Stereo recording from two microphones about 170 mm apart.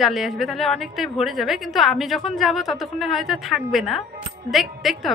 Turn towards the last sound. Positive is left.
turn(degrees=0)  # may be behind; listen again after turning